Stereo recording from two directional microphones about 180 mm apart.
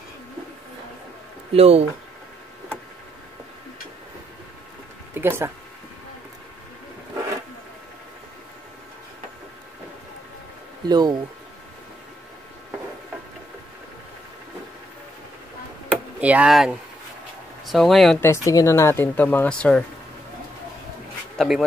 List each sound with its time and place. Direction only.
1.5 s speech: 35° right (ahead or behind)
5.1 s speech: 15° right (ahead or behind)
10.9 s speech: 25° right (ahead or behind)
16.2 s speech: 5° right (ahead or behind)
18.2 s speech: 15° left (ahead or behind)
21.4 s speech: centre (ahead or behind)